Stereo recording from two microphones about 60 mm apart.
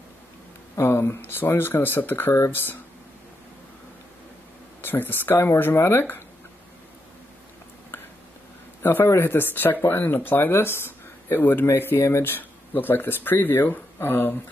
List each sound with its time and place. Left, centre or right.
0.7 s speech: left
1.2 s speech: left
4.8 s speech: left
8.8 s speech: left